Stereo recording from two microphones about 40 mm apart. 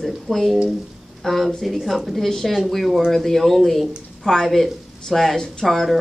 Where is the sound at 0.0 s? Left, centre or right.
Centre.